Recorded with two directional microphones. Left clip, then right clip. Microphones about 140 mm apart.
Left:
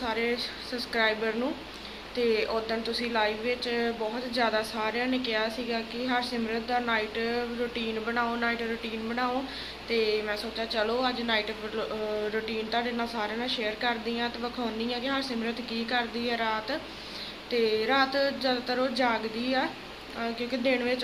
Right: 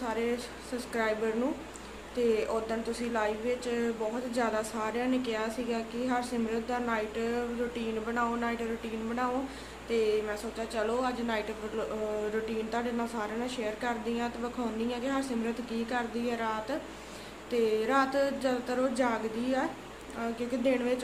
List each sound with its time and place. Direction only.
0.0 s a sound: 15° right (ahead or behind)
0.7 s a woman's voice: 15° right (ahead or behind)
9.8 s a woman's voice: 20° right (ahead or behind)
12.4 s a woman's voice: 15° right (ahead or behind)